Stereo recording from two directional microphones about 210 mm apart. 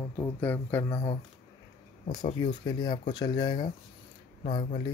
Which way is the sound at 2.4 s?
20° left (ahead or behind).